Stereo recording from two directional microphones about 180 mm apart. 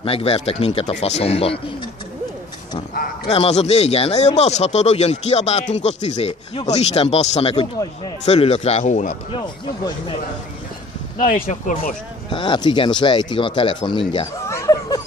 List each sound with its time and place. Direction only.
0.0 s speech: 35° left (ahead or behind)
3.3 s speech: 35° left (ahead or behind)
11.2 s speech: 50° left (ahead or behind)
12.3 s speech: 25° left (ahead or behind)
14.4 s a sound: 15° left (ahead or behind)